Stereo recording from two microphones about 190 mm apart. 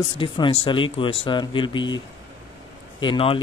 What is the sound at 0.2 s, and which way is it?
Speech, 30° left (ahead or behind).